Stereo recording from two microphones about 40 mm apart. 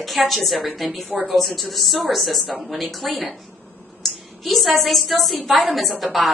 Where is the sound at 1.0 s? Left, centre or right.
Right.